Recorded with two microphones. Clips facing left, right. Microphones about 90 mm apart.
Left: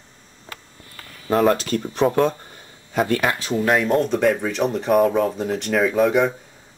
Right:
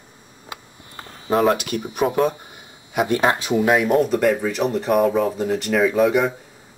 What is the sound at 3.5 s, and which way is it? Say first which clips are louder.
Speech: even; 15° right (ahead or behind).